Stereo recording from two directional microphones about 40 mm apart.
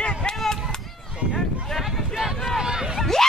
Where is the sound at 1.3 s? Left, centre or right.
Centre.